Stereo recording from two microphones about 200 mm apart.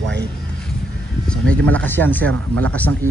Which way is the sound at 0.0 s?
60° right (ahead or behind).